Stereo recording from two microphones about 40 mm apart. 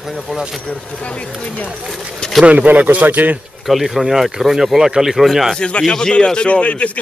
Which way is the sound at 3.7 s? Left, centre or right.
Centre.